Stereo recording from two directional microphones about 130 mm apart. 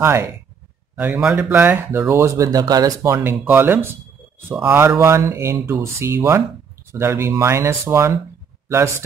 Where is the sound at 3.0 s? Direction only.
15° right (ahead or behind).